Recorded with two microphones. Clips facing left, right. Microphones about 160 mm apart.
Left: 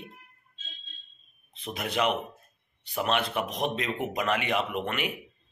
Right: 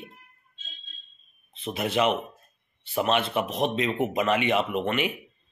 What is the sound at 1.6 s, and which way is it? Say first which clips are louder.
Speech: right 4 dB; 5° right (ahead or behind).